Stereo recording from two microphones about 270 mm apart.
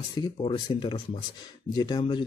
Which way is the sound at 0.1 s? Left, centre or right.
Centre.